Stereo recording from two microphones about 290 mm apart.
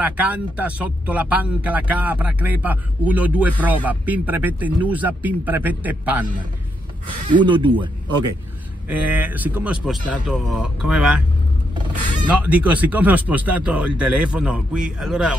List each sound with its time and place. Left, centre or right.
0.0 s speech: centre
7.2 s speech: centre
8.8 s speech: centre
12.3 s speech: centre